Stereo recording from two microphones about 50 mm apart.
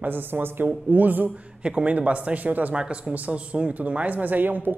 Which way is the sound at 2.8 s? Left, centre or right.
Right.